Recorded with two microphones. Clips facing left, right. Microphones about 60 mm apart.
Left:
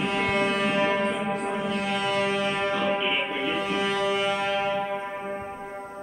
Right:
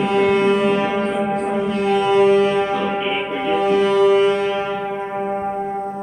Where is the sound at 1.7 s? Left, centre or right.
Centre.